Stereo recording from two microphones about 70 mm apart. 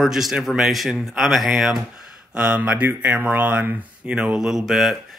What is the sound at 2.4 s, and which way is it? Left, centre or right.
Speech, centre.